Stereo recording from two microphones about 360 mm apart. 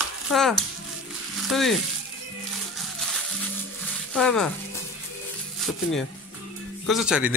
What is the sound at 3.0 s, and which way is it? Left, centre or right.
Crushing, centre.